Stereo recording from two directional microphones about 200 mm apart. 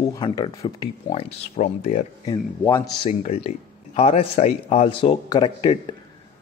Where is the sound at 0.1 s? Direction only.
20° left (ahead or behind).